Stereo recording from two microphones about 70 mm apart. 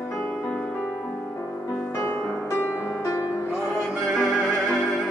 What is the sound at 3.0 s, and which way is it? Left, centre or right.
Music, left.